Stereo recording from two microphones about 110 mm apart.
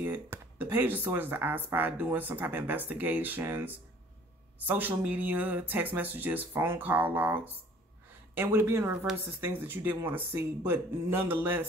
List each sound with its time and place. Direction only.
0.0 s speech: 20° right (ahead or behind)
8.4 s speech: 20° right (ahead or behind)